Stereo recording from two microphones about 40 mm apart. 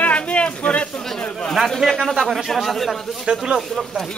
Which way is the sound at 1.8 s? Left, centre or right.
Centre.